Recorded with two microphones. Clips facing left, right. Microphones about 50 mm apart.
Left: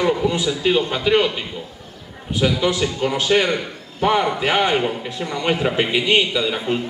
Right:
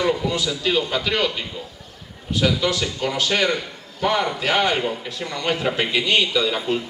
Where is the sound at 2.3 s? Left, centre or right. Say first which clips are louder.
Left 2 dB; left.